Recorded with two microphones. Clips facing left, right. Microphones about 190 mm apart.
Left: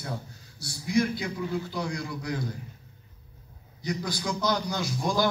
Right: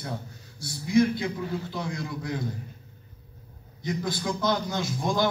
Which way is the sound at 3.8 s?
20° right (ahead or behind).